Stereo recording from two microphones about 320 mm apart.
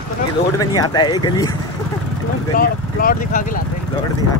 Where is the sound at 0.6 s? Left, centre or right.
Centre.